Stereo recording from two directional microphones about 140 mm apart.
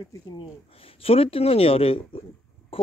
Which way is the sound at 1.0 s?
45° left (ahead or behind).